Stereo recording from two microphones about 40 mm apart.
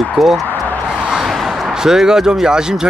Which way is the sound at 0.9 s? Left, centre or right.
Centre.